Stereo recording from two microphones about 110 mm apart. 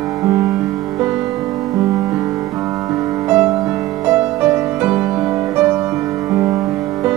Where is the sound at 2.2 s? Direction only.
20° right (ahead or behind).